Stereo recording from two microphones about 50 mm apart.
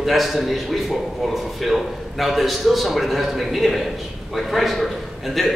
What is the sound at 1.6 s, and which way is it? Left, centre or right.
A man's voice, centre.